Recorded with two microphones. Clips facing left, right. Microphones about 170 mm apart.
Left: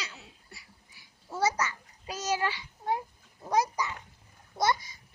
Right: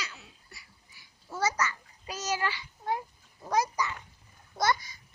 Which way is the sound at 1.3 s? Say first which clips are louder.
Left 2 dB; 10° left (ahead or behind).